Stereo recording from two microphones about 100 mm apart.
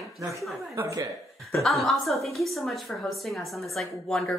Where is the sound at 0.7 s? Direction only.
30° right (ahead or behind).